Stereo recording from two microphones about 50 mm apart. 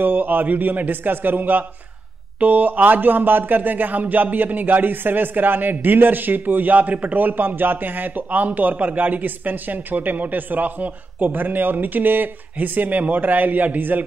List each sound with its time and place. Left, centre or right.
0.0 s speech: right